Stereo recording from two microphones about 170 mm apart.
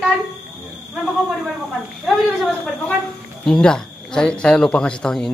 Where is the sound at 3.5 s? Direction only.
5° left (ahead or behind).